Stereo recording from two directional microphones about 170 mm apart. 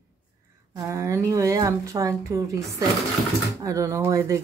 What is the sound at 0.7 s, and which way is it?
A woman's voice, 15° right (ahead or behind).